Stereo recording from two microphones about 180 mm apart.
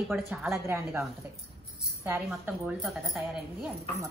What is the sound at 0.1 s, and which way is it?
Speech, 5° right (ahead or behind).